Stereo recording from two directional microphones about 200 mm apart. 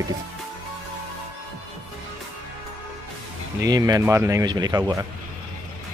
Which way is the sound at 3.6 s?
15° right (ahead or behind).